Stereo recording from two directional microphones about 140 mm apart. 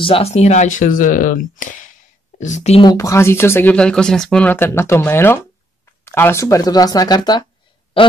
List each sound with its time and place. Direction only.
0.0 s speech: 45° left (ahead or behind)
2.8 s speech: 25° left (ahead or behind)